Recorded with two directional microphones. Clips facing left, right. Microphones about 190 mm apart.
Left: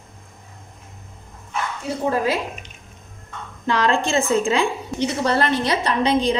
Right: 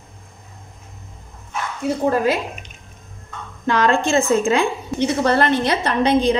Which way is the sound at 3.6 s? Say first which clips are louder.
Right 2 dB; 50° right (ahead or behind).